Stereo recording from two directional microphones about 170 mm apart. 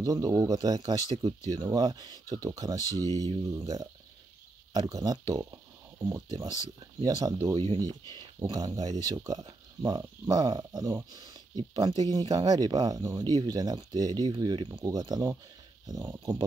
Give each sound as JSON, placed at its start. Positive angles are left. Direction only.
{"t": 0.0, "sound": "speech", "side_deg": -20}
{"t": 7.0, "sound": "speech", "side_deg": -20}